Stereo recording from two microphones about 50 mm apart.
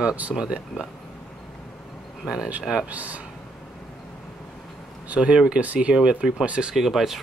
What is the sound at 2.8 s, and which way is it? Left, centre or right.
Speech, right.